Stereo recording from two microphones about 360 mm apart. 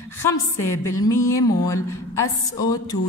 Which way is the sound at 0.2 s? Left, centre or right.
Centre.